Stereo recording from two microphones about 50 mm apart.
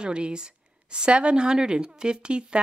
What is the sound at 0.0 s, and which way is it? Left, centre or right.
Speech, centre.